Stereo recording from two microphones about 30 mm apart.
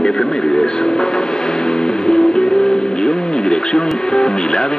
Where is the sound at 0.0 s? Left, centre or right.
Left.